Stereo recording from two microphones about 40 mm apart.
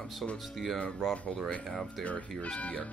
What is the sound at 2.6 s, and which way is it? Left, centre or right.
Speech, left.